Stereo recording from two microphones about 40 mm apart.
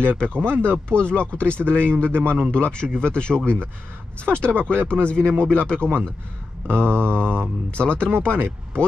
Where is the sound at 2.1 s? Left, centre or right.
Right.